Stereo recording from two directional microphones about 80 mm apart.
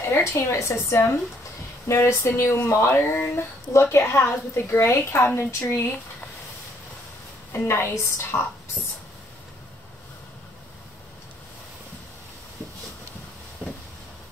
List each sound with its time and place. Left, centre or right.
0.1 s speech: left
7.5 s speech: left